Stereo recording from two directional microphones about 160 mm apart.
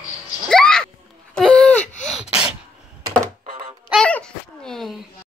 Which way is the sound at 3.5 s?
35° right (ahead or behind).